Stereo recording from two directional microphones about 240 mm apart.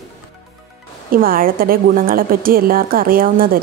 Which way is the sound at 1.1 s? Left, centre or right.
Right.